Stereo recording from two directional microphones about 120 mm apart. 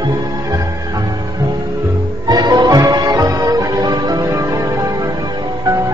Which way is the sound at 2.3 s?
35° right (ahead or behind).